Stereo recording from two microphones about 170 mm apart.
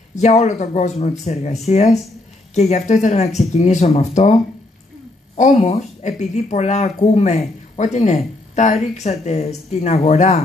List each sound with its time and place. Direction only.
0.2 s speech: 40° left (ahead or behind)